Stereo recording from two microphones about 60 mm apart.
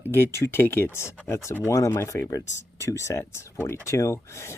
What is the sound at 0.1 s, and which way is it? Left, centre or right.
Speech, left.